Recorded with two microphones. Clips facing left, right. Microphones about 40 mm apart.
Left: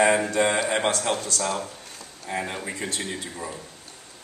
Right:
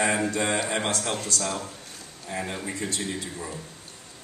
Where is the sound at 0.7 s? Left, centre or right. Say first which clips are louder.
Left 4 dB; centre.